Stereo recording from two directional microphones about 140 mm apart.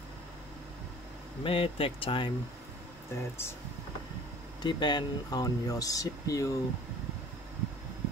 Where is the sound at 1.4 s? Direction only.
40° left (ahead or behind).